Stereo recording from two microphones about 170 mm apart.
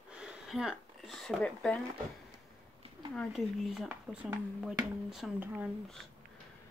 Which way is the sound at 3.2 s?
Centre (ahead or behind).